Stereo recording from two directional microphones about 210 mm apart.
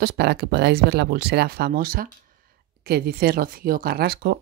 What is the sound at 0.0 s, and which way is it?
Speech, 50° right (ahead or behind).